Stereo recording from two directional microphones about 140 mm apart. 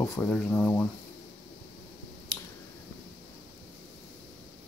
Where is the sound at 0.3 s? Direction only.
10° left (ahead or behind).